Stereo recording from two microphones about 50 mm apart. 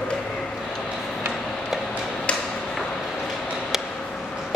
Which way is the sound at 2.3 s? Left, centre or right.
Left.